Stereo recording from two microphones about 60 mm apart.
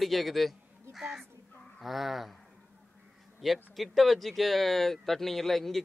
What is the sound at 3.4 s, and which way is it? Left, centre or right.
Speech, centre.